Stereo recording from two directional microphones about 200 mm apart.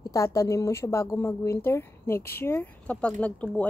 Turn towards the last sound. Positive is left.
turn(degrees=5)  # may be behind; listen again after turning